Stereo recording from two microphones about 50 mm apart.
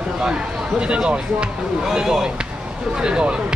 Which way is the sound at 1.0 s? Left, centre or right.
Centre.